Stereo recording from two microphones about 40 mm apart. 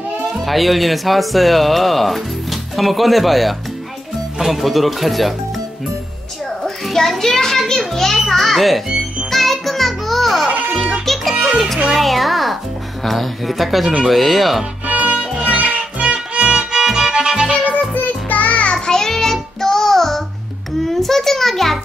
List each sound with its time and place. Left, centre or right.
0.5 s speech: centre
6.6 s children playing: centre
8.2 s speech: centre
9.3 s music: centre
11.9 s speech: centre
14.9 s music: right
16.4 s music: centre
17.6 s music: left
18.9 s music: centre
20.8 s a sound: centre